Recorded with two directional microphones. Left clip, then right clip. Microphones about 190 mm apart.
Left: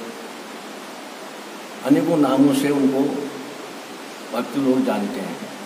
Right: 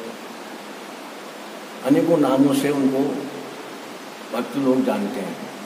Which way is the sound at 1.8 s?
Centre (ahead or behind).